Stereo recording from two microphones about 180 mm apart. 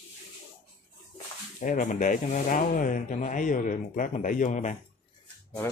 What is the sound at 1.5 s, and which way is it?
Speech, 45° left (ahead or behind).